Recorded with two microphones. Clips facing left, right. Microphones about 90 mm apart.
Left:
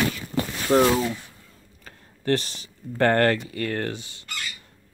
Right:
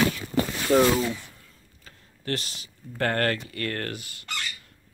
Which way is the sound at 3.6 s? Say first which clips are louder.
Left 4 dB; 10° left (ahead or behind).